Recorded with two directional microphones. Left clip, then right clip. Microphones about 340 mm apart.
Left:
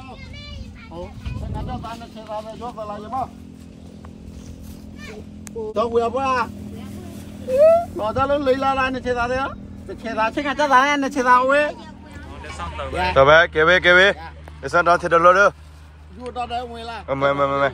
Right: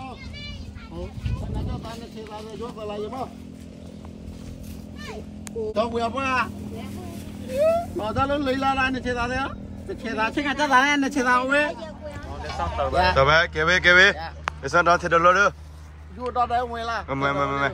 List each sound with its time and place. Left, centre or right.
1.7 s speech: centre
5.8 s speech: centre
12.5 s speech: centre
13.1 s speech: centre